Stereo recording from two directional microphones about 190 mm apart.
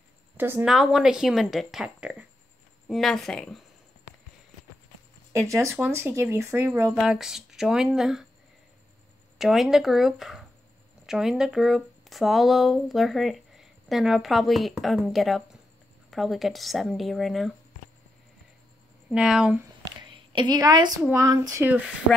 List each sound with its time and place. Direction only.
0.4 s speech: 10° right (ahead or behind)
5.5 s speech: 15° right (ahead or behind)
9.4 s speech: centre (ahead or behind)
19.0 s speech: 5° right (ahead or behind)
20.0 s a sound: 25° right (ahead or behind)
21.0 s speech: 15° right (ahead or behind)